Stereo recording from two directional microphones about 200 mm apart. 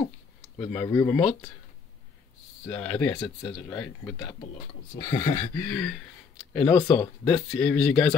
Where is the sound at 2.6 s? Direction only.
5° left (ahead or behind).